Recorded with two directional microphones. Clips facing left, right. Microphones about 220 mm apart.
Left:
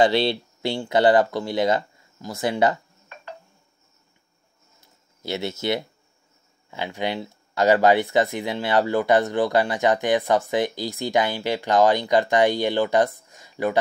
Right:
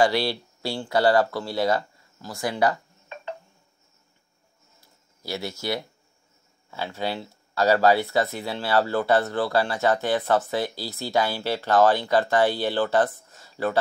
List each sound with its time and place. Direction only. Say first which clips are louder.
0.0 s speech: left 3 dB; 20° left (ahead or behind)
4.7 s a sound: left 2 dB; 25° left (ahead or behind)
6.7 s speech: left 2 dB; 15° left (ahead or behind)